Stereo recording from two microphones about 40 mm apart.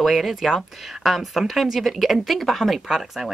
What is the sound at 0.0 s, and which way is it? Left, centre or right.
A woman's voice, centre.